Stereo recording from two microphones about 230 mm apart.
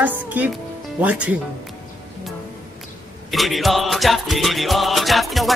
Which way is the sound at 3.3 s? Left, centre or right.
Centre.